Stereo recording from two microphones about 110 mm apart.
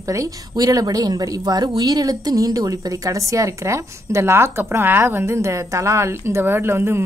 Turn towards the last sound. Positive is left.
turn(degrees=-20)  # may be behind; listen again after turning